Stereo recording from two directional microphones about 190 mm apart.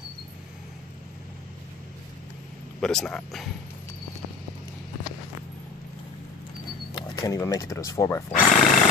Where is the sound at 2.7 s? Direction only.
5° left (ahead or behind).